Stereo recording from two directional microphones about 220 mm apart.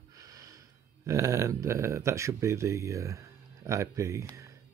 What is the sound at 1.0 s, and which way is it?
Speech, 15° right (ahead or behind).